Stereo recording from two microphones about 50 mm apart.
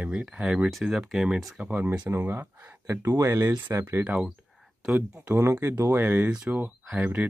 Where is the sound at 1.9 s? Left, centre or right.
Right.